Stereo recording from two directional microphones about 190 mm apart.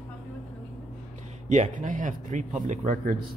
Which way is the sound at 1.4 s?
40° right (ahead or behind).